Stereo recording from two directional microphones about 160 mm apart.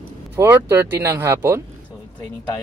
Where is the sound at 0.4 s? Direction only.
15° right (ahead or behind).